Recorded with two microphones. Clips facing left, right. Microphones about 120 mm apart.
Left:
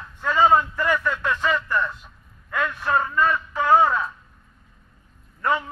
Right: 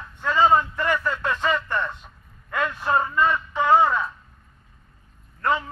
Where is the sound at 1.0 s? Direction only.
10° right (ahead or behind).